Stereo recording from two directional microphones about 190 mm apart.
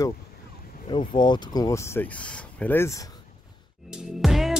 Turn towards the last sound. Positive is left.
turn(degrees=0)  # may be behind; listen again after turning